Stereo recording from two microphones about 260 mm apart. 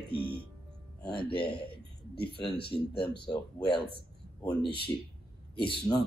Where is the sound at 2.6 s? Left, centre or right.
Centre.